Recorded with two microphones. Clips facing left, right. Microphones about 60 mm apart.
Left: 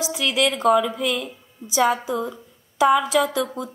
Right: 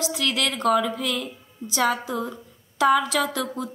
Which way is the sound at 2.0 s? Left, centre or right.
Centre.